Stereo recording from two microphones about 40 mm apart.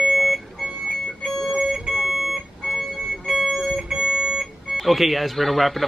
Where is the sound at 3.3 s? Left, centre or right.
Centre.